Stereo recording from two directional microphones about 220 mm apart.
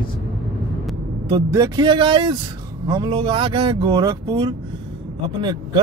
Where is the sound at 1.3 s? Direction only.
15° right (ahead or behind).